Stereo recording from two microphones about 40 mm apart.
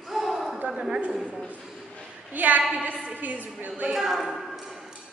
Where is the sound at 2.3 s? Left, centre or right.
Right.